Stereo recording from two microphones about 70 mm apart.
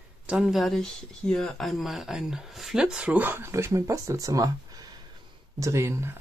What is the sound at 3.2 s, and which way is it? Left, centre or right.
Speech, right.